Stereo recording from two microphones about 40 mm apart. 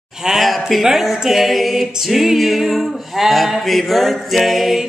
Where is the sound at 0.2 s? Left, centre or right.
Centre.